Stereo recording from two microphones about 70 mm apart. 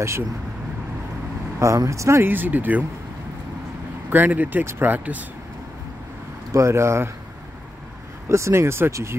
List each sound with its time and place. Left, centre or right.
1.6 s speech: right
2.2 s speech: right
4.1 s speech: right
6.5 s speech: right
8.3 s speech: right